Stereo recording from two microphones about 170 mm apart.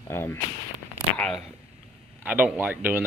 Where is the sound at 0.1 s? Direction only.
15° left (ahead or behind).